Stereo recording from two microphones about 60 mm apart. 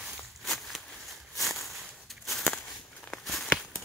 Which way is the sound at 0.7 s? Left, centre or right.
Centre.